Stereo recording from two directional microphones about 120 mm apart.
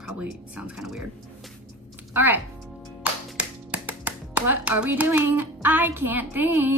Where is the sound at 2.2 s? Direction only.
15° right (ahead or behind).